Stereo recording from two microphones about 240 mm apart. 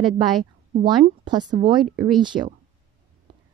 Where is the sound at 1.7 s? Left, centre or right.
Centre.